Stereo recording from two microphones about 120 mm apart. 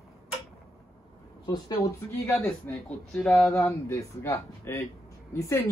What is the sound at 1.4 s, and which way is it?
Speech, 30° left (ahead or behind).